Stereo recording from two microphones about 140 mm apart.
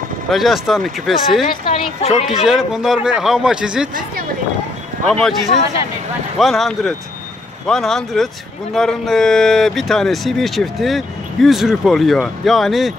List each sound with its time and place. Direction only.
0.3 s speech: centre (ahead or behind)
1.7 s speech: 45° left (ahead or behind)
2.2 s speech: 5° right (ahead or behind)
5.0 s speech: 5° left (ahead or behind)
6.3 s speech: centre (ahead or behind)